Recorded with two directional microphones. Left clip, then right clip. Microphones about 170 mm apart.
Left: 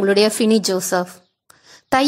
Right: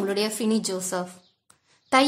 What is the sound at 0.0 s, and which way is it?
A woman's voice, 35° left (ahead or behind).